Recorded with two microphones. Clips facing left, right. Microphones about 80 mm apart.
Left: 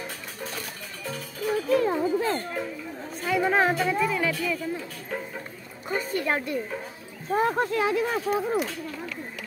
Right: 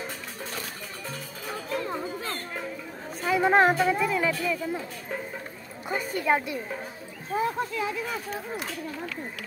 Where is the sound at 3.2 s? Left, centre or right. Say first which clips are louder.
Right 2 dB; centre.